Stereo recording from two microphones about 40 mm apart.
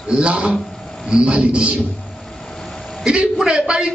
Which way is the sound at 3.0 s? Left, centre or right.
Right.